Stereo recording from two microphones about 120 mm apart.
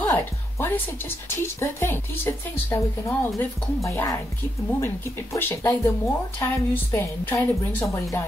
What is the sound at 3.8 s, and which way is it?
A woman's voice, 25° left (ahead or behind).